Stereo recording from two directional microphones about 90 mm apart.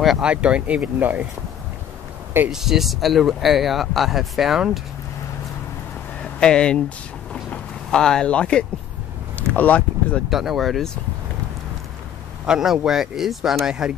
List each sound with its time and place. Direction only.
0.0 s speech: centre (ahead or behind); by 1.2 s 20° right (ahead or behind)
2.5 s speech: 5° right (ahead or behind)
6.4 s speech: 10° left (ahead or behind)
7.9 s speech: 10° left (ahead or behind)
10.3 s speech: centre (ahead or behind)
12.4 s speech: 5° right (ahead or behind)